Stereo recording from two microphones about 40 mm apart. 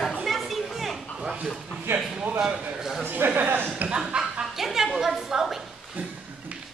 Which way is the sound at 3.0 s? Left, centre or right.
Right.